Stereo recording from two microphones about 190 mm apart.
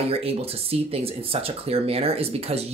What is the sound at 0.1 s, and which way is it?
Speech, 30° right (ahead or behind).